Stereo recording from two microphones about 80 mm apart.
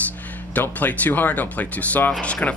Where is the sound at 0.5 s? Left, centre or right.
Left.